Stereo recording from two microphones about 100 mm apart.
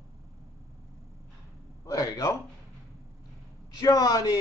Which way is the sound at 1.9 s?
40° left (ahead or behind).